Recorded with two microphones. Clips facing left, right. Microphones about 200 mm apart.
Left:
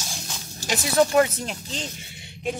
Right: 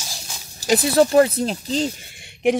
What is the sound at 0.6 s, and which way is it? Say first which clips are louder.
Speech: right 5 dB; 35° right (ahead or behind).